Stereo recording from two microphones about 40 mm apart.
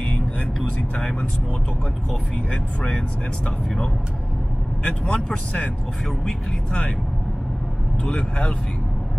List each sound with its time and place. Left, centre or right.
2.5 s speech: left
4.8 s speech: left
8.0 s speech: left